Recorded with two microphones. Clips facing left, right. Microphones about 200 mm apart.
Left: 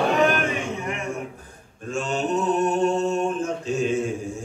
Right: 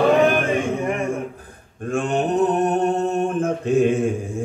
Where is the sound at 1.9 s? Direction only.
55° right (ahead or behind).